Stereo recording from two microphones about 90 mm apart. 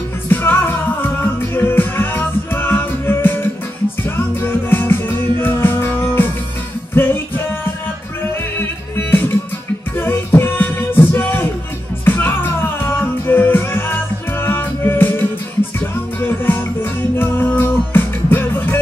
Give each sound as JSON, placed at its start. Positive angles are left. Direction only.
{"t": 0.3, "sound": "music", "side_deg": 25}
{"t": 8.5, "sound": "music", "side_deg": 25}